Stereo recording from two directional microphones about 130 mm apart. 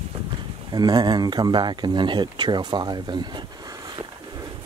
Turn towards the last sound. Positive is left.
turn(degrees=-35)  # may be behind; listen again after turning